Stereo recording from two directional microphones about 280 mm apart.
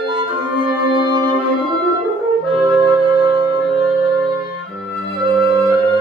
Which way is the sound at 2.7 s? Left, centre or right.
Centre.